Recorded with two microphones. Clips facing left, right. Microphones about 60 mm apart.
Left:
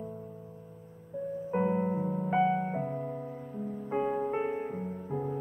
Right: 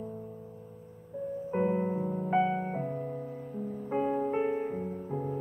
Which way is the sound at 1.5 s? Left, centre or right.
Centre.